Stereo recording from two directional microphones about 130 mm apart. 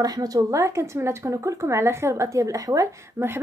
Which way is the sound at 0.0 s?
30° right (ahead or behind).